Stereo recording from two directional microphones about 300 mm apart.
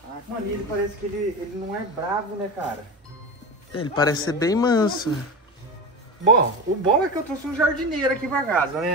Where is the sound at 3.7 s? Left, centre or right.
Centre.